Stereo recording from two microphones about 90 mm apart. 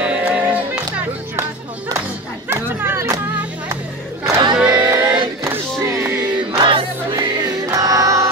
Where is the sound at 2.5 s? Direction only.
25° right (ahead or behind).